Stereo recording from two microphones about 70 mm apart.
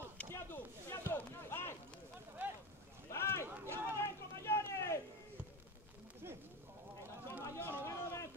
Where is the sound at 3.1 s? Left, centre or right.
Left.